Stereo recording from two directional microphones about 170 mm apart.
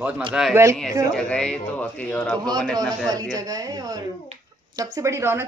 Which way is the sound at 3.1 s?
20° right (ahead or behind).